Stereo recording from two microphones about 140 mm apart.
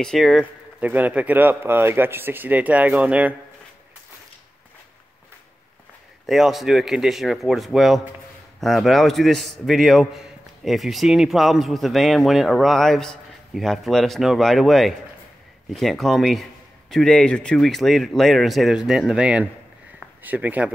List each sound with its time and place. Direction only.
0.0 s speech: centre (ahead or behind)
6.2 s a man's voice: centre (ahead or behind)